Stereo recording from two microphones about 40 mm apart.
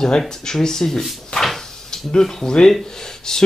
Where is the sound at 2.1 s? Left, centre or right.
Centre.